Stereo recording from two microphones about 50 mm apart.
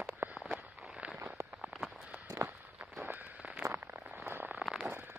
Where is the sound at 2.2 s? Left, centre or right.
Right.